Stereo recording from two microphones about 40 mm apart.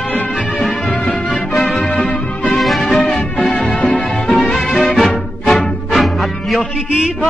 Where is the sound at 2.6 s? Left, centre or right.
Centre.